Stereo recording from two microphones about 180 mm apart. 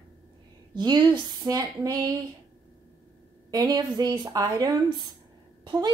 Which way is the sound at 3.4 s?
20° right (ahead or behind).